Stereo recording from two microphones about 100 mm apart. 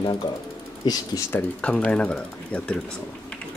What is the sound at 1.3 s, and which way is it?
Speech, 15° left (ahead or behind).